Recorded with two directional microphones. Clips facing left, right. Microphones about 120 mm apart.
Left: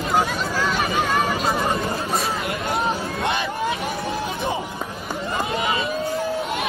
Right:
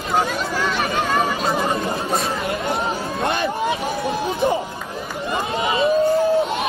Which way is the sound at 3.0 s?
25° right (ahead or behind).